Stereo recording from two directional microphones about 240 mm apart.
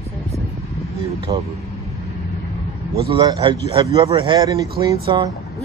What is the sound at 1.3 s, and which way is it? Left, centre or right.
Speech, centre.